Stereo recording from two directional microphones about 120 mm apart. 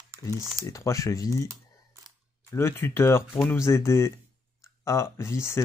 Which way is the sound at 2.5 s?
20° left (ahead or behind).